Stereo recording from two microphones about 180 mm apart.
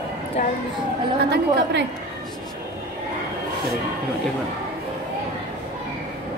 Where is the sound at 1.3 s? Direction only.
65° right (ahead or behind).